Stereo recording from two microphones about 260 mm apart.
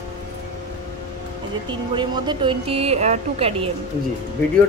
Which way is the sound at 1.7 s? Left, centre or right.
Centre.